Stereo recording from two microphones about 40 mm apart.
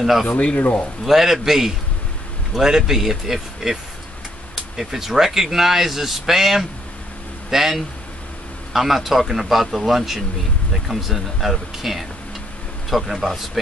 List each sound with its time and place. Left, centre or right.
0.0 s speech: centre
0.3 s speech: left
1.0 s speech: centre
4.7 s speech: centre